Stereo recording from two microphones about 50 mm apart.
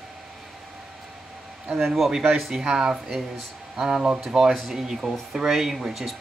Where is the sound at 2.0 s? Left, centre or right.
Centre.